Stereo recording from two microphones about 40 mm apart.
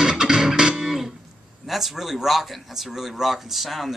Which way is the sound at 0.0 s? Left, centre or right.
Centre.